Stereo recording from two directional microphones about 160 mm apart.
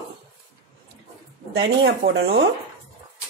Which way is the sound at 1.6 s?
90° right.